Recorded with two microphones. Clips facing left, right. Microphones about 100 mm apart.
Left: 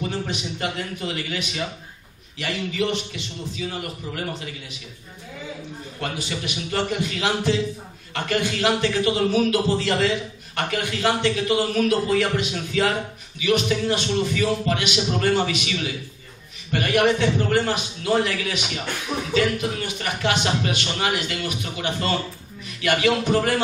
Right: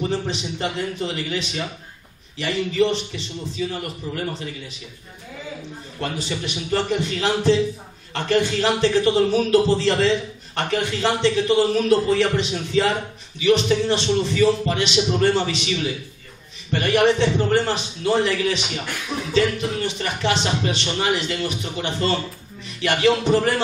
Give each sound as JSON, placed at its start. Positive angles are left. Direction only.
{"t": 0.3, "sound": "a man's voice", "side_deg": -30}
{"t": 5.9, "sound": "a man's voice", "side_deg": -30}